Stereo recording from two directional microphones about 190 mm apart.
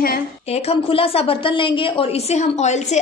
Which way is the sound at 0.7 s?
30° left (ahead or behind).